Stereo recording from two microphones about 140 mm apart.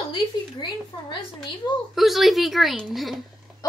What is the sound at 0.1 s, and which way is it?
Speech, 35° left (ahead or behind).